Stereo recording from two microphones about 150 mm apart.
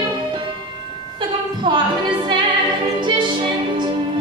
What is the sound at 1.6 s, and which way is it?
Music, 30° right (ahead or behind).